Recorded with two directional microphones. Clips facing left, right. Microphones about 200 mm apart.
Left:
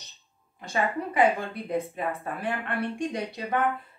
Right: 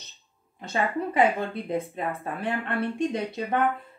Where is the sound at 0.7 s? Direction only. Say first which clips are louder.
Right 1 dB; 25° right (ahead or behind).